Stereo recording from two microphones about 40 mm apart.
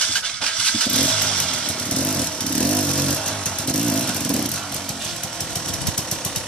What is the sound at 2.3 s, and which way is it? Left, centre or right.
Vehicle, left.